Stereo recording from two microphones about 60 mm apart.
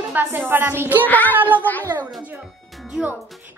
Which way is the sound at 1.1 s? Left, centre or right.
Left.